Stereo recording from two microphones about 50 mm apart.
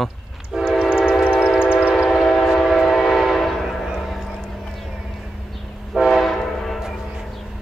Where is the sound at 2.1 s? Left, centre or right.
Centre.